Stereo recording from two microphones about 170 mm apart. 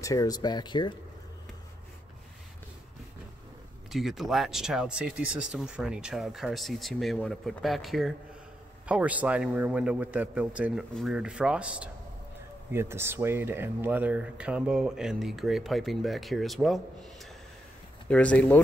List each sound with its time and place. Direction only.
0.0 s speech: 20° left (ahead or behind)
3.9 s a man's voice: centre (ahead or behind)